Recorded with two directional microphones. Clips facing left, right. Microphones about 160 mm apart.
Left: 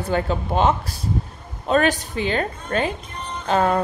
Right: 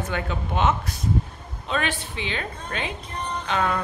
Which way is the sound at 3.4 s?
40° left (ahead or behind).